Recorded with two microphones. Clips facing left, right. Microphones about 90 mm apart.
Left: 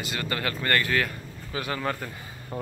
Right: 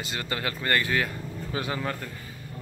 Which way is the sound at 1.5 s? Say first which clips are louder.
Right 1 dB; 30° right (ahead or behind).